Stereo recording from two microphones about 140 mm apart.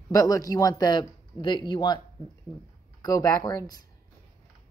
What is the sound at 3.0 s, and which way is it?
Speech, 25° left (ahead or behind).